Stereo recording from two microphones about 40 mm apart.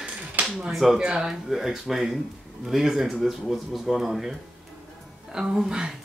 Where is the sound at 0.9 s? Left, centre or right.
Right.